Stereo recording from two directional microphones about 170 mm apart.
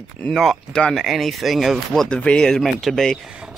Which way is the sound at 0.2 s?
Centre (ahead or behind).